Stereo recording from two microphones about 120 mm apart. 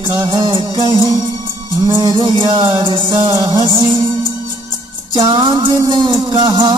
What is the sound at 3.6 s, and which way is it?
Music, 45° right (ahead or behind).